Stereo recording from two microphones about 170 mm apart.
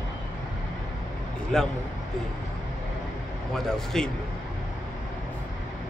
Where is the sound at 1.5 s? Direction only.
5° left (ahead or behind).